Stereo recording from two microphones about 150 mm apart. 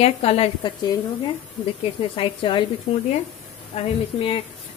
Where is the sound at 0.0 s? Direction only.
45° left (ahead or behind).